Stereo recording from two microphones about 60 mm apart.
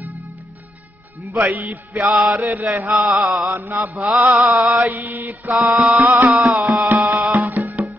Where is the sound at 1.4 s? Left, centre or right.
Right.